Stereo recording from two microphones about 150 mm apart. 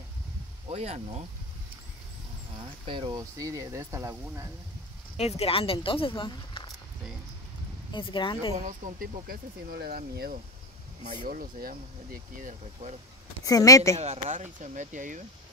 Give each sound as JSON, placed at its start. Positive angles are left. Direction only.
{"t": 0.7, "sound": "speech", "side_deg": -45}
{"t": 2.5, "sound": "speech", "side_deg": -35}
{"t": 5.1, "sound": "speech", "side_deg": 45}
{"t": 7.9, "sound": "speech", "side_deg": 30}
{"t": 8.5, "sound": "speech", "side_deg": -55}
{"t": 11.1, "sound": "speech", "side_deg": -75}
{"t": 13.4, "sound": "a woman's voice", "side_deg": 25}
{"t": 13.9, "sound": "speech", "side_deg": -45}